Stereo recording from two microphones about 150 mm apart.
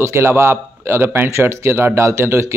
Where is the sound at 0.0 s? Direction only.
15° right (ahead or behind).